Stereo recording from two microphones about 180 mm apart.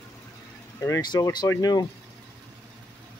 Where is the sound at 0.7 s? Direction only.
15° left (ahead or behind).